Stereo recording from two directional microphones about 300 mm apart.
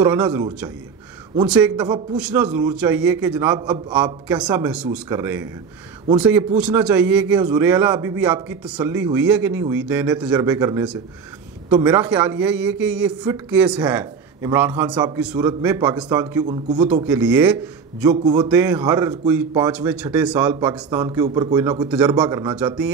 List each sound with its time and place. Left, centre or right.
0.0 s a man's voice: centre
16.4 s speech: right
17.0 s a man's voice: centre